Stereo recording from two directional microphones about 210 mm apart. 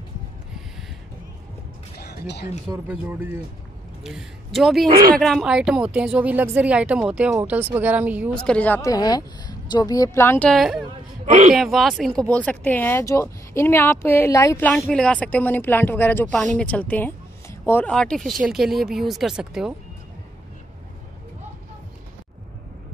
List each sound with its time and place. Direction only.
2.0 s music: 50° left (ahead or behind)
2.9 s a woman's voice: 10° right (ahead or behind)
8.4 s speech: 5° left (ahead or behind)